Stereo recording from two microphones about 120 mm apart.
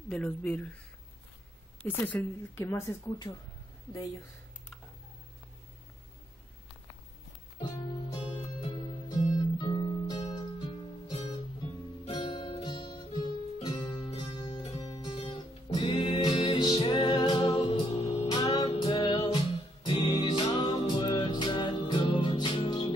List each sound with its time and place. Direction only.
0.1 s speech: 10° left (ahead or behind)
1.8 s speech: 10° left (ahead or behind); by 3.4 s 30° left (ahead or behind)
7.6 s music: 40° left (ahead or behind)
9.3 s guitar: 35° left (ahead or behind)
10.6 s music: 45° left (ahead or behind)
12.1 s guitar: 45° left (ahead or behind)
15.0 s music: 45° left (ahead or behind)
18.4 s music: 40° left (ahead or behind)